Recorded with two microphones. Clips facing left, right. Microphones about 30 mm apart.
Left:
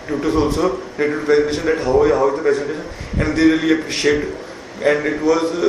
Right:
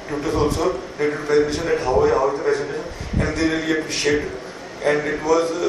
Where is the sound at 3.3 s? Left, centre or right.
Left.